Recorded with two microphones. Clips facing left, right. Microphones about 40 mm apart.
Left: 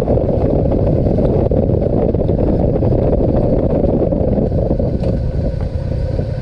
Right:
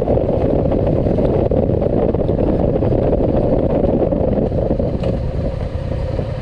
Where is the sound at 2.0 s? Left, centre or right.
Right.